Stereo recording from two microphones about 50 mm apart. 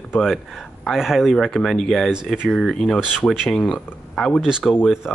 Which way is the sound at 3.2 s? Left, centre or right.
Left.